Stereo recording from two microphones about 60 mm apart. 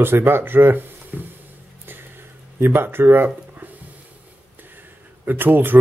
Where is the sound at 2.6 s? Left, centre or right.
Right.